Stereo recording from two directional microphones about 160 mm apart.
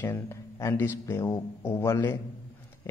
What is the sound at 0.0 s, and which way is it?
A man's voice, 15° left (ahead or behind).